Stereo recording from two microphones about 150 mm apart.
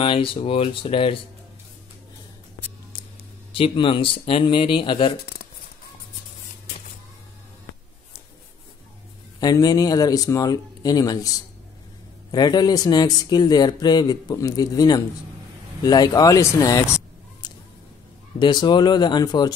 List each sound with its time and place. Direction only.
0.0 s speech: 35° left (ahead or behind)
3.5 s speech: 35° left (ahead or behind)
5.2 s shuffling cards: 90° left
9.4 s speech: 25° left (ahead or behind)